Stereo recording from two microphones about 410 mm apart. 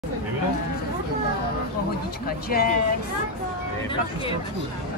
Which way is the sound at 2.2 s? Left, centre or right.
Left.